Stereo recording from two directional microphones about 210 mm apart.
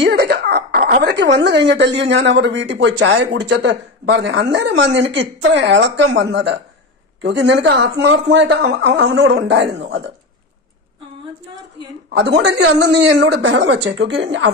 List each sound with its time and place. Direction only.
0.0 s speech: 50° right (ahead or behind)
12.1 s speech: 55° right (ahead or behind)